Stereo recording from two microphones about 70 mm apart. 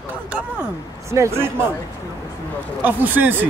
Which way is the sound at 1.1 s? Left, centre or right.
Right.